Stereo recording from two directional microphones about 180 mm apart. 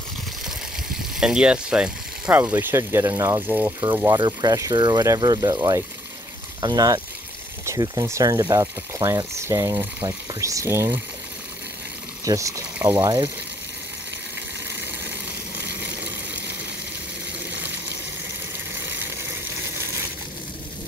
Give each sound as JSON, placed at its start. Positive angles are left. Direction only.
{"t": 1.2, "sound": "speech", "side_deg": -5}
{"t": 4.2, "sound": "speech", "side_deg": -25}
{"t": 12.3, "sound": "speech", "side_deg": -20}
{"t": 13.0, "sound": "speech", "side_deg": -25}
{"t": 14.8, "sound": "a sound", "side_deg": -80}